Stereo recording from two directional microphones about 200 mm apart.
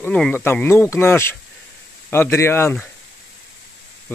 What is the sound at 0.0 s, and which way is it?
Speech, 5° left (ahead or behind).